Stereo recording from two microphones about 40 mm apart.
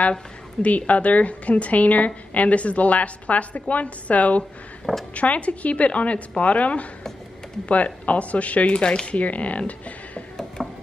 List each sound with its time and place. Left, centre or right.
0.6 s a woman's voice: left
8.7 s a woman's voice: left
10.6 s a sound: centre